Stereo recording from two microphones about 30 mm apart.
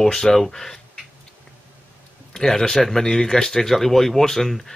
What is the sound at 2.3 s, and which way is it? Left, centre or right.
A man's voice, centre.